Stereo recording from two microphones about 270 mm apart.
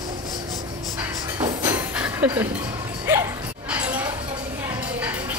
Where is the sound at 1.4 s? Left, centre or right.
Centre.